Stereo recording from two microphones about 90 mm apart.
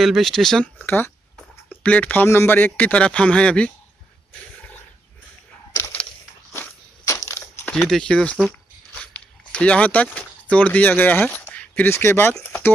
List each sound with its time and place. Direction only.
0.0 s speech: centre (ahead or behind)
0.8 s speech: 25° left (ahead or behind)
7.1 s crushing: 35° left (ahead or behind)
7.3 s a sound: 25° left (ahead or behind)
7.7 s speech: 5° left (ahead or behind)
9.0 s dog: 15° left (ahead or behind)
10.1 s speech: 15° left (ahead or behind)
11.3 s a sound: 20° left (ahead or behind)
11.9 s speech: 30° left (ahead or behind)